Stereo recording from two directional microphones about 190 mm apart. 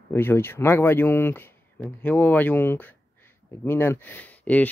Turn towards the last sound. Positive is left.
turn(degrees=10)  # may be behind; listen again after turning